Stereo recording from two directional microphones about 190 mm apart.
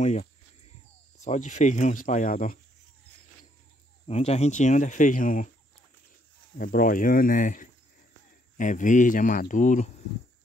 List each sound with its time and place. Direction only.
0.0 s speech: 35° left (ahead or behind)
4.1 s speech: 35° left (ahead or behind)
6.6 s speech: 50° left (ahead or behind)